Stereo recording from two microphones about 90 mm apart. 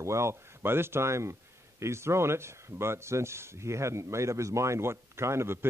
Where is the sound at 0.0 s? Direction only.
30° right (ahead or behind).